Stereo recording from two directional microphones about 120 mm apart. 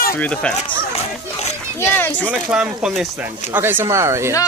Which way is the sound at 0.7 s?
60° left (ahead or behind).